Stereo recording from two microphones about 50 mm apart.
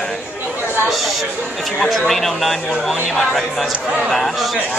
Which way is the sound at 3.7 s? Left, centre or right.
Right.